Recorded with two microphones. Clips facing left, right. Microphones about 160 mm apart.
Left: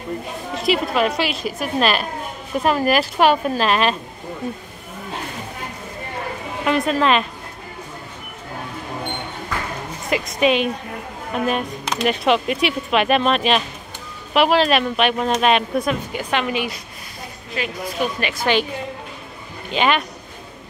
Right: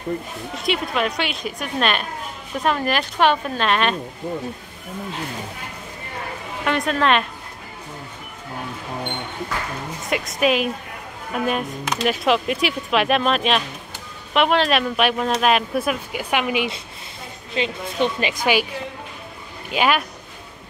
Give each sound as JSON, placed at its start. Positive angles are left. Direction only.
{"t": 0.6, "sound": "speech", "side_deg": 0}
{"t": 6.6, "sound": "speech", "side_deg": 0}
{"t": 10.0, "sound": "speech", "side_deg": 0}
{"t": 17.6, "sound": "a woman's voice", "side_deg": -25}
{"t": 19.7, "sound": "speech", "side_deg": -5}